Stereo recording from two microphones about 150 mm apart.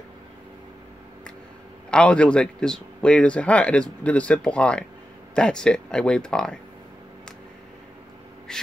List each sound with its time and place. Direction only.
1.9 s a man's voice: 5° left (ahead or behind)